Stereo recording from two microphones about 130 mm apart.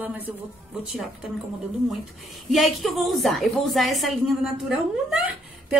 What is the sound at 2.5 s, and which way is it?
A woman's voice, centre (ahead or behind).